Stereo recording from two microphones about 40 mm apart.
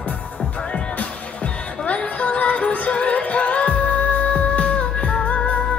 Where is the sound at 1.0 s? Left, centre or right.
Left.